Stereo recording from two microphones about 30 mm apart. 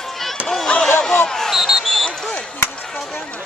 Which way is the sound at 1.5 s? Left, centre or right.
Centre.